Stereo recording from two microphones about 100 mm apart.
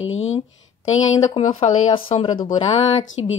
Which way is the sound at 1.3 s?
65° left (ahead or behind).